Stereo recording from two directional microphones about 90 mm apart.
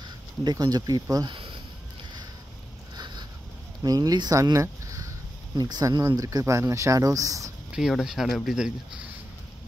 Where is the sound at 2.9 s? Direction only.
55° right (ahead or behind).